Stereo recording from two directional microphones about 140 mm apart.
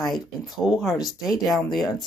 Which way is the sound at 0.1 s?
Centre (ahead or behind).